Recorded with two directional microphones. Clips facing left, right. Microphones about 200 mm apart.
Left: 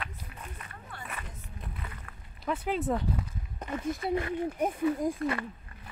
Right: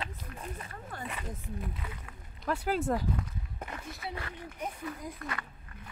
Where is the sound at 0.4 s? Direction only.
35° right (ahead or behind).